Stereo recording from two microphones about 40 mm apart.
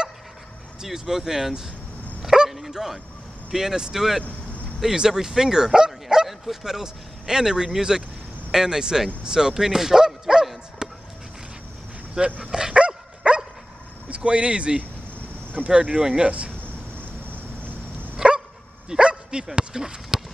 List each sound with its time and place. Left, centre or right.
0.8 s speech: centre
2.2 s dog: centre
2.5 s speech: centre
10.8 s a sound: right
12.4 s dog: centre
14.0 s speech: right
18.1 s dog: right
18.9 s speech: right